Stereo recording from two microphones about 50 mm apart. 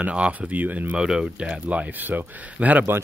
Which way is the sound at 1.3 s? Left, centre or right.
Right.